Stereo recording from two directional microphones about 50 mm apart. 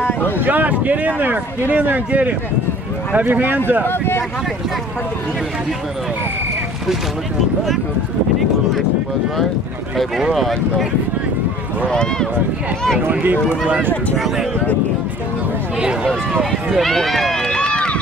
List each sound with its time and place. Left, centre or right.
0.0 s speech: left
0.4 s a man's voice: right
3.8 s speech: left
10.3 s speech: centre
11.9 s speech: centre
14.1 s speech: centre
16.7 s run: centre; by 18.0 s left